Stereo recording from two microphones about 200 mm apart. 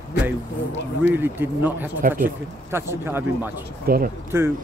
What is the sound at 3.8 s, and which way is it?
Speech, 50° right (ahead or behind).